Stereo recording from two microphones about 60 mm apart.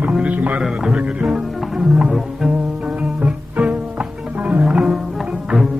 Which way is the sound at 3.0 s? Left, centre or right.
Right.